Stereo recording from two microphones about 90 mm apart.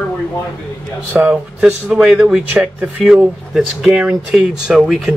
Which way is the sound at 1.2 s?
10° right (ahead or behind).